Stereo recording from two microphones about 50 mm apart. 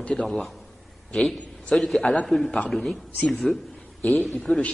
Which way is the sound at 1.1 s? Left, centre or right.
Centre.